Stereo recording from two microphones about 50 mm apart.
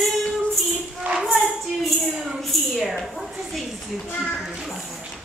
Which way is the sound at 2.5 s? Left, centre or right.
Centre.